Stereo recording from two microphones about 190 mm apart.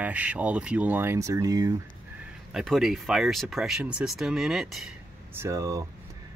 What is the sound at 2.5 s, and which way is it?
Speech, centre (ahead or behind).